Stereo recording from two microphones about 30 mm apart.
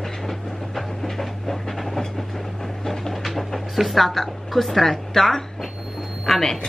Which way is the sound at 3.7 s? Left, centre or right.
Centre.